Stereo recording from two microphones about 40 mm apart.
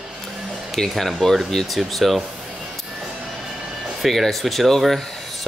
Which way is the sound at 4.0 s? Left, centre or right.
Centre.